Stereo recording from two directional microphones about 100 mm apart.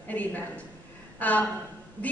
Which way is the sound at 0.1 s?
15° left (ahead or behind).